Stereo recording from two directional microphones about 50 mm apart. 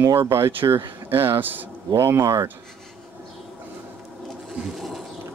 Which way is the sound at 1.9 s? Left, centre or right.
Right.